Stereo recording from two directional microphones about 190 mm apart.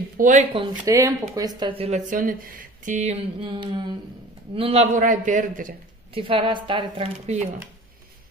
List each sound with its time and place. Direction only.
0.2 s a man's voice: 45° right (ahead or behind)
0.6 s speech: 15° right (ahead or behind)
1.6 s a man's voice: 30° right (ahead or behind); by 5.8 s 45° right (ahead or behind)
6.1 s speech: 25° right (ahead or behind)